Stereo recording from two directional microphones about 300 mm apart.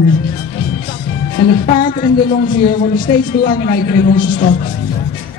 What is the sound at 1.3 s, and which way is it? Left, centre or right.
Speech, left.